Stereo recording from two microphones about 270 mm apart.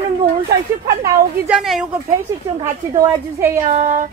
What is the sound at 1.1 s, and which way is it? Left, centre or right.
Speech, centre.